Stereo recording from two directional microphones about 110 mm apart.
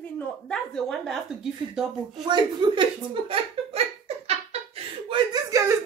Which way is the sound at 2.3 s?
40° right (ahead or behind).